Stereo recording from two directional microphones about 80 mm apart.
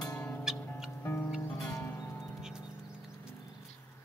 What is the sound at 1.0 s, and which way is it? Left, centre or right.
Music, left.